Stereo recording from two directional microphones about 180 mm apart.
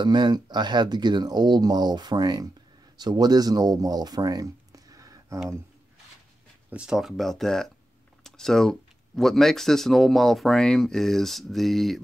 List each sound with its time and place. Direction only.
0.0 s speech: 25° right (ahead or behind)
6.7 s speech: 5° right (ahead or behind)